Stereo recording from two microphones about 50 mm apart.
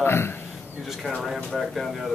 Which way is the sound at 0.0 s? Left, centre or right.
Left.